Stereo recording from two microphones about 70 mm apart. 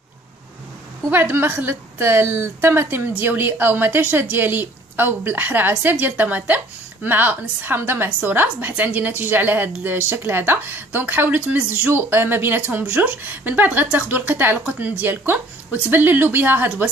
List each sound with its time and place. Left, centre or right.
1.1 s a woman's voice: right